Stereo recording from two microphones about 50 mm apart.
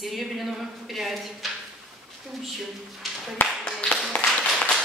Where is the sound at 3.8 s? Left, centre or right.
Left.